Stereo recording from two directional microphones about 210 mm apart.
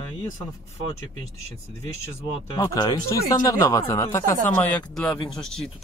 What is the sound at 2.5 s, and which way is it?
Speech, 20° left (ahead or behind).